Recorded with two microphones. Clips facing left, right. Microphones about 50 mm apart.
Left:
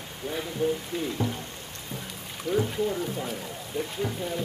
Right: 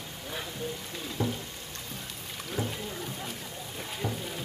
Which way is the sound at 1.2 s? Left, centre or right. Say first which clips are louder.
Right 2 dB; left.